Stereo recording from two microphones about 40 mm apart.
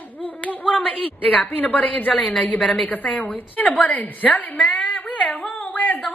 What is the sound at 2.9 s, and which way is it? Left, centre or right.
A woman's voice, left.